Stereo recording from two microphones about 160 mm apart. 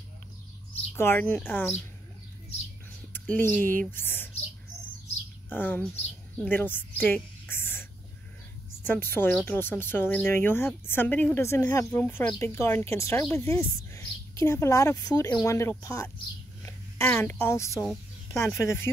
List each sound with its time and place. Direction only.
0.9 s a woman's voice: 15° left (ahead or behind)
3.1 s speech: 10° left (ahead or behind)
5.5 s a woman's voice: 10° left (ahead or behind)
8.8 s a woman's voice: 15° left (ahead or behind)